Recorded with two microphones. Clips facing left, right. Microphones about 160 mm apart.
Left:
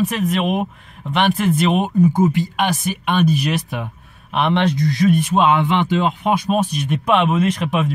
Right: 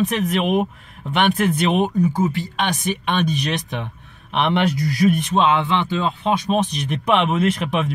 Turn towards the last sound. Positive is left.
turn(degrees=0)  # may be behind; listen again after turning